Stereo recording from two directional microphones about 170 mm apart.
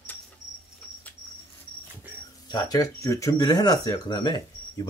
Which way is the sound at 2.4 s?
25° left (ahead or behind).